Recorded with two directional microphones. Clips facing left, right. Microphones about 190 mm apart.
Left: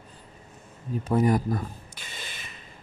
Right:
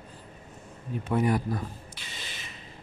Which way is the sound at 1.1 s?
40° left (ahead or behind).